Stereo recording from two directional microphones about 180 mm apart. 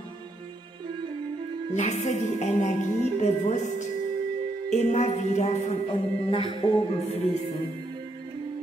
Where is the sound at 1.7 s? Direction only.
40° left (ahead or behind).